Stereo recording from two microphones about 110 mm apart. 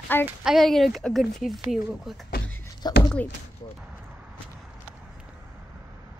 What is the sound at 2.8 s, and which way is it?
Speech, 40° left (ahead or behind).